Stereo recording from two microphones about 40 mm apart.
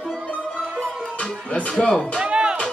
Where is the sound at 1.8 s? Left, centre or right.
Centre.